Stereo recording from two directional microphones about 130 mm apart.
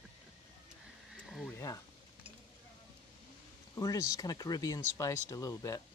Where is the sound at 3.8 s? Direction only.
25° left (ahead or behind).